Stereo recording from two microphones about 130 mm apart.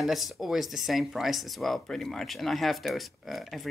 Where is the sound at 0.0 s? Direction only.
Centre (ahead or behind).